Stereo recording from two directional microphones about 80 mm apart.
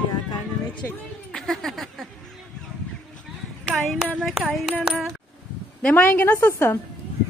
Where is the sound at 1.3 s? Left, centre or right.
Centre.